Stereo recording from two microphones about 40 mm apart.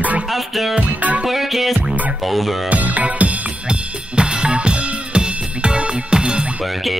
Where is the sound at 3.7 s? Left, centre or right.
Right.